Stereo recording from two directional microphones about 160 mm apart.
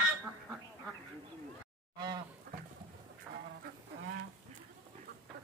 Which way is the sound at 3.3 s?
15° right (ahead or behind).